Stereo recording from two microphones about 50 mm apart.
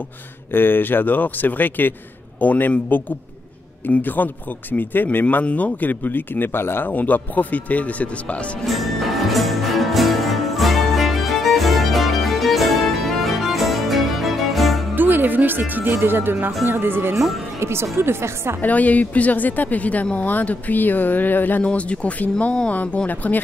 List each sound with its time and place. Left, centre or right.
0.5 s speech: left
4.0 s speech: left
5.2 s speech: left
6.9 s speech: left
8.6 s music: centre
15.0 s speech: right
17.6 s speech: right
18.6 s speech: left
21.6 s speech: left
23.0 s speech: left